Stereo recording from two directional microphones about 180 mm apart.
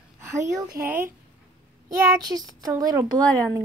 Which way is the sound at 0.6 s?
15° right (ahead or behind).